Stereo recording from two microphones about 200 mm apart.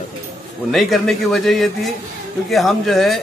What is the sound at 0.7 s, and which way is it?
A man's voice, centre (ahead or behind).